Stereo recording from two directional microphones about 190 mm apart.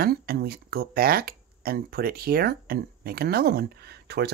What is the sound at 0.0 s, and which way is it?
Speech, 55° right (ahead or behind).